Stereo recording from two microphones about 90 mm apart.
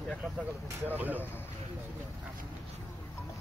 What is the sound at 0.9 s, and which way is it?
Speech, 20° right (ahead or behind).